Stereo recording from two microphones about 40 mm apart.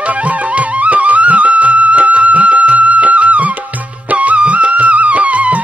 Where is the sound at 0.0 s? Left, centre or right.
Right.